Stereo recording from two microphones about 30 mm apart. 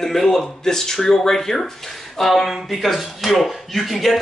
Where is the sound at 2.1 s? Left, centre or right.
Centre.